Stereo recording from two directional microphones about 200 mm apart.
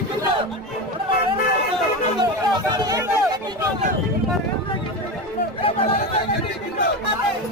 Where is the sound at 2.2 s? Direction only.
20° right (ahead or behind).